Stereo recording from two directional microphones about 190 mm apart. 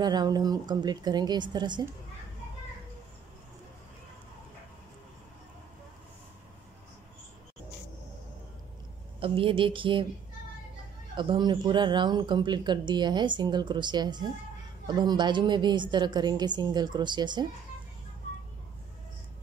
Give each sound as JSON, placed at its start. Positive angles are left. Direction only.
{"t": 0.0, "sound": "speech", "side_deg": -20}
{"t": 9.2, "sound": "speech", "side_deg": -30}
{"t": 11.1, "sound": "speech", "side_deg": -25}